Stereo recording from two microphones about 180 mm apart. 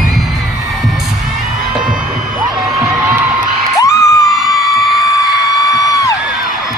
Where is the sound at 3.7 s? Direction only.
20° left (ahead or behind).